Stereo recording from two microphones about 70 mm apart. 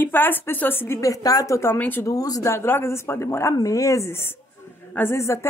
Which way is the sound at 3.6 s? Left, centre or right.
Left.